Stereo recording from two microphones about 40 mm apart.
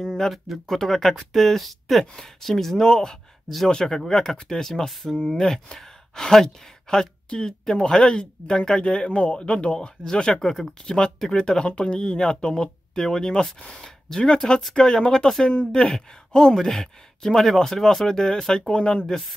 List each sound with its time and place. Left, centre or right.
0.3 s speech: centre
18.7 s speech: left
19.0 s speech: centre